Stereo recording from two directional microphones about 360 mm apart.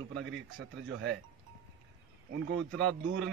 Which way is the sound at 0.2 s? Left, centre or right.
Right.